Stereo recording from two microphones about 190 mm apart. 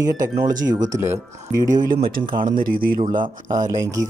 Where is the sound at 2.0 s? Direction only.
50° right (ahead or behind).